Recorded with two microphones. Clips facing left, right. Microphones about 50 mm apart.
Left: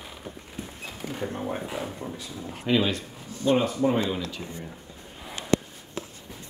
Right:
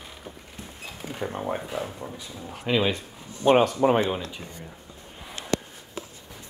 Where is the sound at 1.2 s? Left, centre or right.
Centre.